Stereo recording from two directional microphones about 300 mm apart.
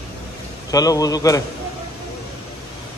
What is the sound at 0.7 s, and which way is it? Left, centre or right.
Speech, centre.